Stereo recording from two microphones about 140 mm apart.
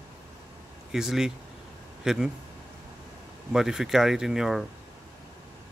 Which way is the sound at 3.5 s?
5° right (ahead or behind).